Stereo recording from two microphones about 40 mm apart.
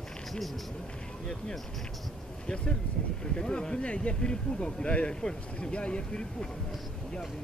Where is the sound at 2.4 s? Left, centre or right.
Left.